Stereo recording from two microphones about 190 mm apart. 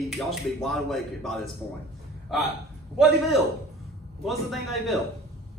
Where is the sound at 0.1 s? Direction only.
Centre (ahead or behind).